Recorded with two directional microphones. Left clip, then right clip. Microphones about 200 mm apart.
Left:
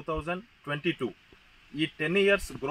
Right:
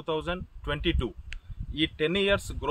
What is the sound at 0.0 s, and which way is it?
Speech, 25° right (ahead or behind).